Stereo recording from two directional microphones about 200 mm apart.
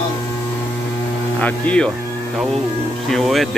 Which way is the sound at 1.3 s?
5° left (ahead or behind).